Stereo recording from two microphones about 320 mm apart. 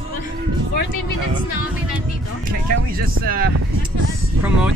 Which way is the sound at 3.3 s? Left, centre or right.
Right.